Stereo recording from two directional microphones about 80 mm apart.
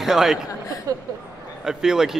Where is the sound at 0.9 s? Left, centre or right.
Right.